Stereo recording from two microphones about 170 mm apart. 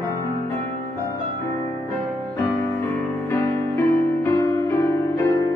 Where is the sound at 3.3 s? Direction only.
15° left (ahead or behind).